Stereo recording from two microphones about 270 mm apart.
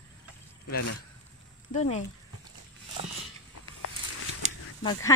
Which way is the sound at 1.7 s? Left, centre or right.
Left.